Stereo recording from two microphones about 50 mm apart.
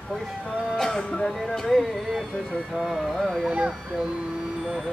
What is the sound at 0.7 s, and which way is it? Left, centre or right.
Music, centre.